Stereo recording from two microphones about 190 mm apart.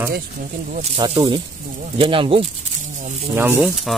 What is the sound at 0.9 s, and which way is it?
Speech, 30° right (ahead or behind).